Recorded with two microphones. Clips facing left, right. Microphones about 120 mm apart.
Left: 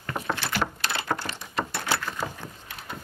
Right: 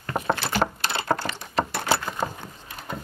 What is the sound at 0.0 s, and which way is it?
Patter, 30° right (ahead or behind).